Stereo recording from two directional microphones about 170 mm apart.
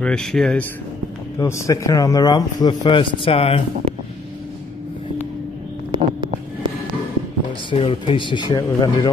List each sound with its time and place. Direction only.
0.0 s speech: 5° left (ahead or behind)
1.4 s speech: 20° left (ahead or behind); by 3.6 s 35° left (ahead or behind)
5.9 s a sound: 30° right (ahead or behind)
7.7 s speech: 35° left (ahead or behind)